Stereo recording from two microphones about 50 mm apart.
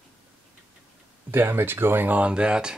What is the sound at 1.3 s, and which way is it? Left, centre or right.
Speech, right.